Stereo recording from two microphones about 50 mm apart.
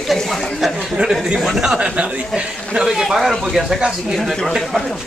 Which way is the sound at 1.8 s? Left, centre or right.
Centre.